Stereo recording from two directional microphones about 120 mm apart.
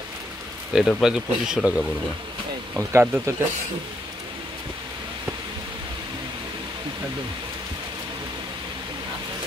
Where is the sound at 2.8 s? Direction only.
20° right (ahead or behind).